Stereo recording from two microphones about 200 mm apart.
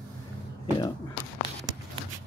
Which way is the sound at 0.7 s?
20° left (ahead or behind).